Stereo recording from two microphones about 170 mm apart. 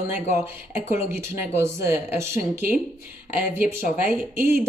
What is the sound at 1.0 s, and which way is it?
Speech, 15° right (ahead or behind).